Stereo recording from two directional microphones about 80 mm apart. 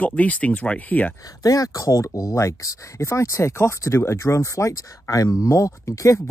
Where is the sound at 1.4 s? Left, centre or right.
Left.